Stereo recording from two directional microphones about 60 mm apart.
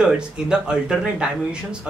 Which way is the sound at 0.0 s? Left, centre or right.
Centre.